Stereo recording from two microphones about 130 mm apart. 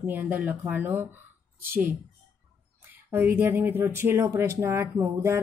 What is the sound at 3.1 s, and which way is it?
Speech, 15° right (ahead or behind).